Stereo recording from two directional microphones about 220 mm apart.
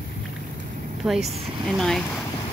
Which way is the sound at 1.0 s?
Centre (ahead or behind).